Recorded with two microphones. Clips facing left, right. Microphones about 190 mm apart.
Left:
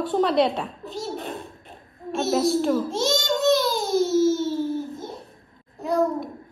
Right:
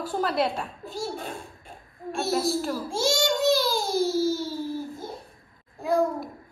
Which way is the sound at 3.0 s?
Centre (ahead or behind).